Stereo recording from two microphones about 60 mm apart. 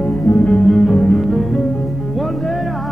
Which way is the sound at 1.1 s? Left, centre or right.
Centre.